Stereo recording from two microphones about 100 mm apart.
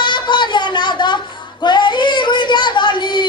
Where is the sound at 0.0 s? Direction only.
50° left (ahead or behind).